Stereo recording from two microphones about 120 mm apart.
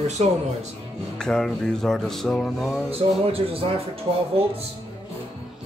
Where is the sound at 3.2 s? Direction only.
55° right (ahead or behind).